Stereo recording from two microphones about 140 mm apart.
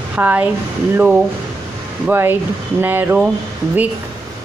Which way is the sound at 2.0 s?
15° right (ahead or behind).